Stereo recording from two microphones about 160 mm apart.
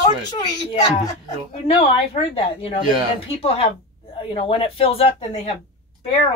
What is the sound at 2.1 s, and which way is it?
Speech, 35° left (ahead or behind).